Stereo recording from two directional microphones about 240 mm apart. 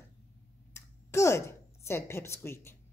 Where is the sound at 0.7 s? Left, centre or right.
Centre.